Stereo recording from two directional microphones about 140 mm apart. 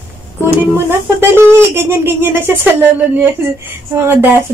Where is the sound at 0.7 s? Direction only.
15° right (ahead or behind).